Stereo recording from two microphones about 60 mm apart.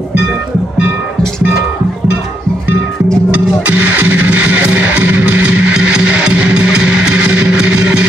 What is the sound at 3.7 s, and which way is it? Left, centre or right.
Music, right.